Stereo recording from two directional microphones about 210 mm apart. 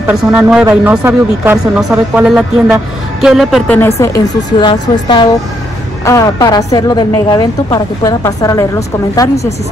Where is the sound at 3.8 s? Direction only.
10° left (ahead or behind).